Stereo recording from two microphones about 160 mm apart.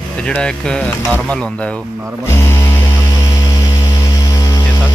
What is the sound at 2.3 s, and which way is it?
Mains hum, 15° left (ahead or behind).